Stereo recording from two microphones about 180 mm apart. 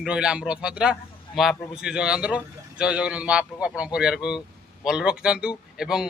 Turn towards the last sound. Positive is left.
turn(degrees=-5)  # may be behind; listen again after turning